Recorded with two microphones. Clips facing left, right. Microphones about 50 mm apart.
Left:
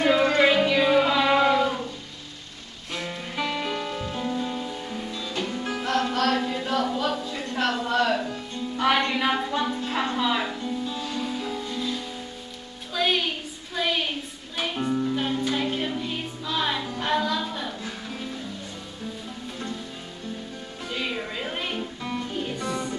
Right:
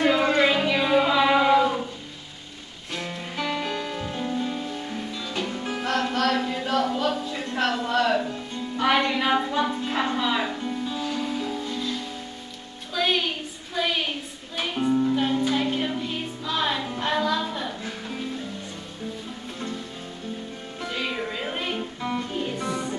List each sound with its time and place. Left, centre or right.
0.4 s music: centre
2.9 s music: centre
6.0 s a sound: centre
7.0 s music: centre
10.6 s music: centre
13.7 s a sound: centre
14.6 s music: centre
17.8 s music: centre
20.8 s music: centre